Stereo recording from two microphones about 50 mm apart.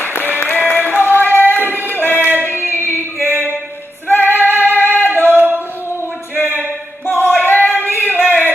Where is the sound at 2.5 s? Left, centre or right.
Left.